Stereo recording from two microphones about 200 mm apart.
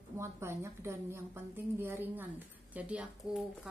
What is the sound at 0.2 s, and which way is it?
A woman's voice, 15° right (ahead or behind).